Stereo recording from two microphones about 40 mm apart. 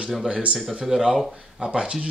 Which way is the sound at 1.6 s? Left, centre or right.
Right.